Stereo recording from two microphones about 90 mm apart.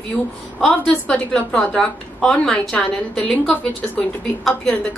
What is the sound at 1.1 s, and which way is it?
A woman's voice, 10° left (ahead or behind).